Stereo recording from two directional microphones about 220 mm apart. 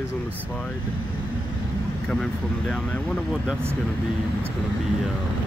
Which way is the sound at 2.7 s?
Centre (ahead or behind).